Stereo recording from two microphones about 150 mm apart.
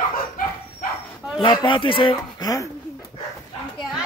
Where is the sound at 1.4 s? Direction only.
30° left (ahead or behind).